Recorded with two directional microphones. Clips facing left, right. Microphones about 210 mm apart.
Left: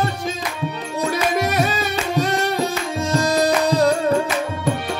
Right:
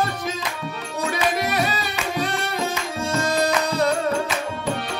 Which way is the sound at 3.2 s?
35° left (ahead or behind).